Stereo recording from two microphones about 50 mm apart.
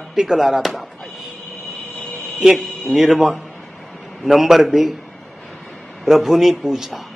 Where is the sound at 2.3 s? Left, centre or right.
Centre.